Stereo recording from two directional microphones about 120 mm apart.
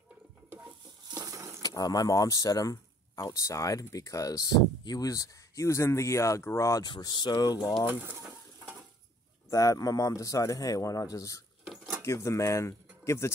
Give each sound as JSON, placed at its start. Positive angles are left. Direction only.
{"t": 1.0, "sound": "a sound", "side_deg": -30}
{"t": 1.6, "sound": "speech", "side_deg": 30}
{"t": 6.9, "sound": "speech", "side_deg": 35}
{"t": 7.8, "sound": "speech", "side_deg": -15}
{"t": 9.5, "sound": "speech", "side_deg": 30}
{"t": 11.6, "sound": "cutlery", "side_deg": 0}
{"t": 12.0, "sound": "speech", "side_deg": 25}